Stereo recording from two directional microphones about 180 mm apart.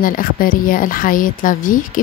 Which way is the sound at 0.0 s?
50° left (ahead or behind).